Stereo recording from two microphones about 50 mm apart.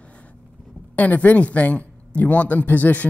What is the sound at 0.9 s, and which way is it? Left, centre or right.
Speech, left.